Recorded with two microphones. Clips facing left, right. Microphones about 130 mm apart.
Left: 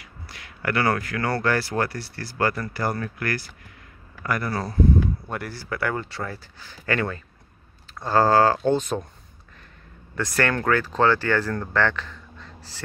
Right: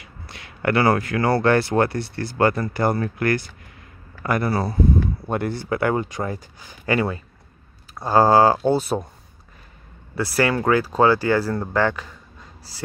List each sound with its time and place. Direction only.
0.0 s a sound: 25° right (ahead or behind)
1.4 s speech: 25° right (ahead or behind)
4.5 s speech: 10° right (ahead or behind)
5.3 s speech: 25° right (ahead or behind)
10.1 s speech: 10° right (ahead or behind)